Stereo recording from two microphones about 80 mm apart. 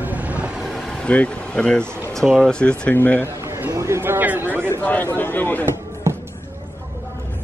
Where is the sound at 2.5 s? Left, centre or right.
Centre.